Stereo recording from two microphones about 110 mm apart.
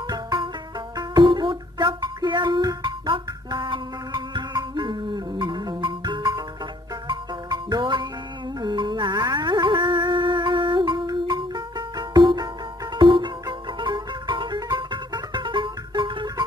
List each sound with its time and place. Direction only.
0.1 s music: 40° right (ahead or behind)